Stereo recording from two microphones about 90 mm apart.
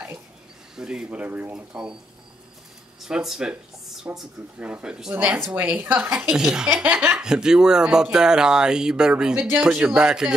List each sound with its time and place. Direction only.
0.7 s speech: 5° right (ahead or behind)
3.0 s speech: 5° right (ahead or behind)
4.6 s speech: 15° right (ahead or behind)
5.1 s speech: 20° right (ahead or behind)
6.0 s speech: 5° right (ahead or behind)
7.2 s speech: 10° right (ahead or behind)